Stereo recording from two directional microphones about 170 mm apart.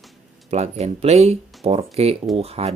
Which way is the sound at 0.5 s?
40° right (ahead or behind).